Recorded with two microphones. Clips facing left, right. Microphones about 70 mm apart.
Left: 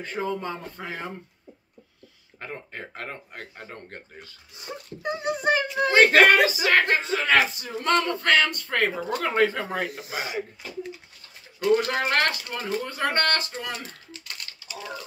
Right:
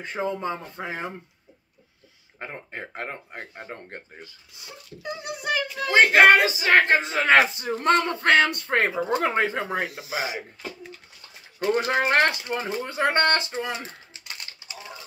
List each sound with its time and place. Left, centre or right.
0.0 s speech: right
2.3 s speech: right
4.6 s a child's voice: left
6.1 s speech: right
11.8 s speech: right
12.8 s typing: right